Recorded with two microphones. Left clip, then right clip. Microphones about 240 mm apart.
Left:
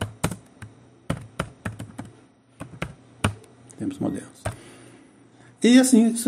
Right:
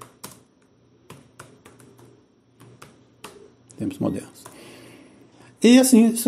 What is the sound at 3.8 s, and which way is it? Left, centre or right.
Speech, centre.